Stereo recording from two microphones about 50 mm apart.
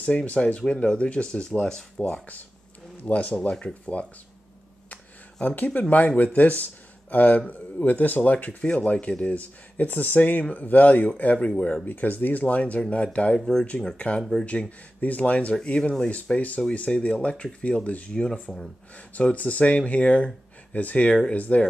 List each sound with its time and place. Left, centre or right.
0.0 s speech: left
3.0 s speech: left
5.8 s speech: left
8.6 s speech: left
11.3 s speech: left
11.8 s speech: left
13.4 s speech: centre
13.9 s speech: left
15.6 s speech: centre